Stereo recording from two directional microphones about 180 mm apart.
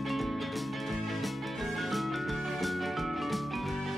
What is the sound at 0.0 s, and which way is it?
Music, centre (ahead or behind).